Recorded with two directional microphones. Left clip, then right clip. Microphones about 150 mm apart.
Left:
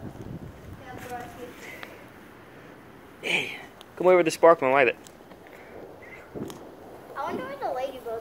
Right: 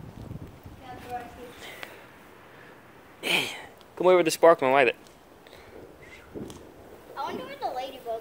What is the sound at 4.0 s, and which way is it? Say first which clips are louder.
Speech: left 1 dB; 40° right (ahead or behind).